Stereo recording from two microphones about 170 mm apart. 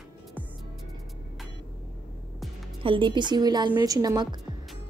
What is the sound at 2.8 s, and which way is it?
A woman's voice, 30° right (ahead or behind).